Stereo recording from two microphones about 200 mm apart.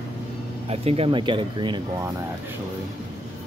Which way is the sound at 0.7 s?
30° right (ahead or behind).